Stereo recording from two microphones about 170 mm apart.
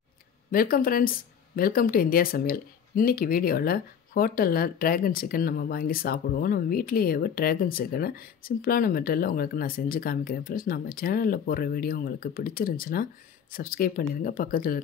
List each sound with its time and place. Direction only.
0.5 s speech: 55° left (ahead or behind)